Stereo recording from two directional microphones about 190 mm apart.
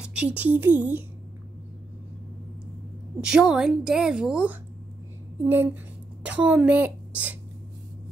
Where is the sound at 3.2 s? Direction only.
5° right (ahead or behind).